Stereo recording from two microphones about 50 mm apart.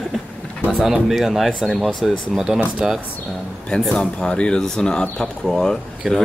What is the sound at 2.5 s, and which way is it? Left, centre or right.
Speech, centre.